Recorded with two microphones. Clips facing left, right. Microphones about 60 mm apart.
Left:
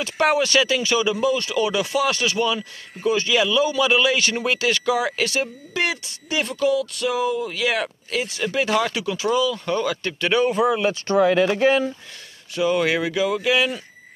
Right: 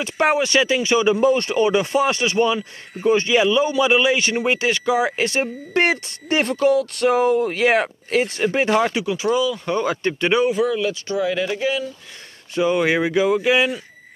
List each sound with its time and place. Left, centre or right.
0.0 s speech: right
10.8 s speech: left
11.1 s speech: left
12.5 s speech: right